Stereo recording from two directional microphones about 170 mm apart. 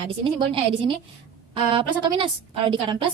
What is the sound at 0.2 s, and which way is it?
A woman's voice, 30° right (ahead or behind).